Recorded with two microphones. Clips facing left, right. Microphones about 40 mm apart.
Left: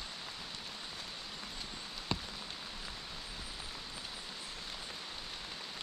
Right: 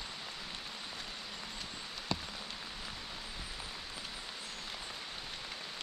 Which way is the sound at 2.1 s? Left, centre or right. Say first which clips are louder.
Even; left.